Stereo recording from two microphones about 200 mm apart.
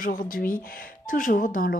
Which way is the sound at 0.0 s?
45° left (ahead or behind).